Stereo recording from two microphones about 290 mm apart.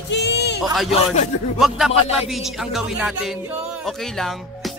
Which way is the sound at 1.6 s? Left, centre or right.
Centre.